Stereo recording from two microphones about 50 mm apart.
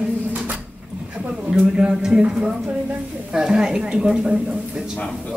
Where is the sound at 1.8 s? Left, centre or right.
Centre.